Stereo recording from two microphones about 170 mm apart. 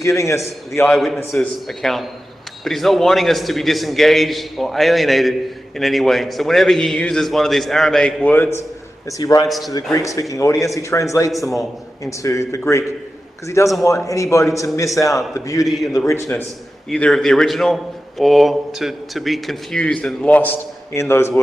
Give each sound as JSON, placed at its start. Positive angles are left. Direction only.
{"t": 0.0, "sound": "speech", "side_deg": 15}
{"t": 0.9, "sound": "a man's voice", "side_deg": 0}
{"t": 13.8, "sound": "speech", "side_deg": 20}
{"t": 15.6, "sound": "a man's voice", "side_deg": 0}
{"t": 16.1, "sound": "speech", "side_deg": 15}
{"t": 16.9, "sound": "a man's voice", "side_deg": 5}